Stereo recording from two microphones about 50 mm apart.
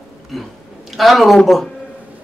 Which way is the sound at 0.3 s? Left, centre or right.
Centre.